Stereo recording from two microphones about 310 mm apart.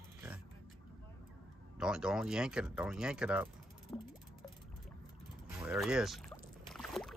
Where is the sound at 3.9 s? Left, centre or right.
Centre.